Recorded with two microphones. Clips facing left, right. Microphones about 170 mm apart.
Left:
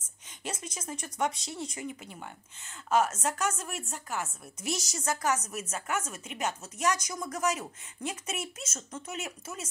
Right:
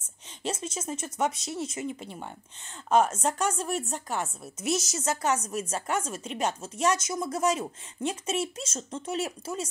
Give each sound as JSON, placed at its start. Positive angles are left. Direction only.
{"t": 0.4, "sound": "a woman's voice", "side_deg": -25}
{"t": 4.6, "sound": "a woman's voice", "side_deg": -20}